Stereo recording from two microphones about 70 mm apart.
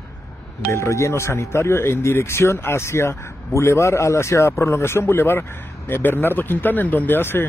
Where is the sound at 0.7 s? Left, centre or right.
Left.